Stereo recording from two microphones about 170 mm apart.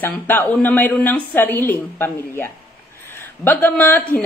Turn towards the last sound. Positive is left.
turn(degrees=10)  # may be behind; listen again after turning